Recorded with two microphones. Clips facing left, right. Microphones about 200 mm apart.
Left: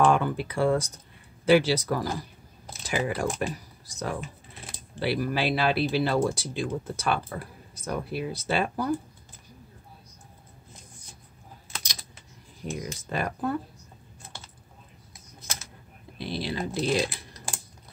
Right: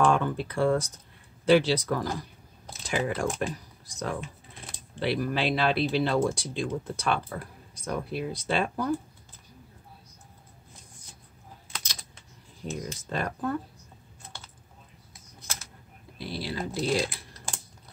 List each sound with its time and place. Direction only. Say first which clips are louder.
0.0 s speech: left 2 dB; 10° left (ahead or behind)
11.7 s typing: left 1 dB; 15° left (ahead or behind)
12.6 s speech: left 1 dB; 10° left (ahead or behind)
16.2 s speech: left 2 dB; 20° left (ahead or behind)